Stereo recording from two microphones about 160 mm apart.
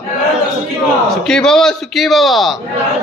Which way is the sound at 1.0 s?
5° left (ahead or behind).